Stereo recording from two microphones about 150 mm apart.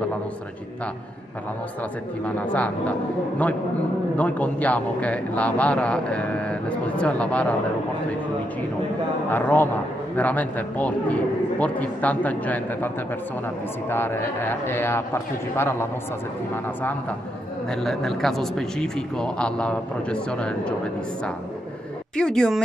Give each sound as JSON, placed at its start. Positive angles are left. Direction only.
{"t": 2.2, "sound": "a man's voice", "side_deg": 10}
{"t": 9.3, "sound": "a man's voice", "side_deg": 10}
{"t": 17.6, "sound": "a man's voice", "side_deg": 0}
{"t": 22.1, "sound": "a man's voice", "side_deg": 5}